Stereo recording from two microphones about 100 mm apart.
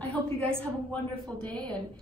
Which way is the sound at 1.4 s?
10° left (ahead or behind).